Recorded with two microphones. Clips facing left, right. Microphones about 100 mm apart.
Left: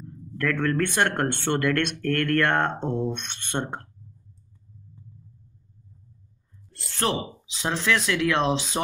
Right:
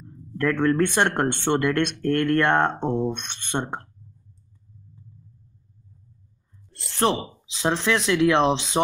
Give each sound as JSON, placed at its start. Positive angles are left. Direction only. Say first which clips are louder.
{"t": 0.0, "sound": "a sound", "louder": "right 3 dB", "side_deg": -25}
{"t": 0.7, "sound": "speech", "louder": "right 2 dB", "side_deg": -25}
{"t": 7.0, "sound": "speech", "louder": "right 4 dB", "side_deg": -20}